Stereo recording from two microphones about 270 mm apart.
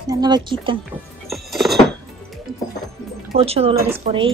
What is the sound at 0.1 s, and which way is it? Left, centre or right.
Speech, centre.